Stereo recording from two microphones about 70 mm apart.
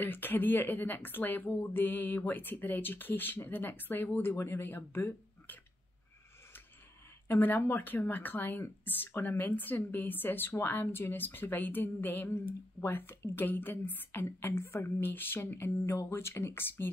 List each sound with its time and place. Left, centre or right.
0.0 s speech: left
4.4 s speech: left
7.2 s speech: left
12.8 s a sound: left